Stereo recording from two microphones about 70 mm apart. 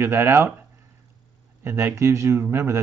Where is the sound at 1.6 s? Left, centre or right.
Right.